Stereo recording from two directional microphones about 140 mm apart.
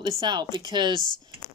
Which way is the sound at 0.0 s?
35° right (ahead or behind).